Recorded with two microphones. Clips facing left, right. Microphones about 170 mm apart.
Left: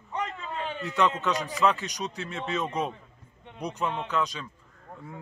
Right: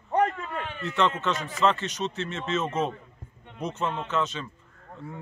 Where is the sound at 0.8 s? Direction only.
15° left (ahead or behind).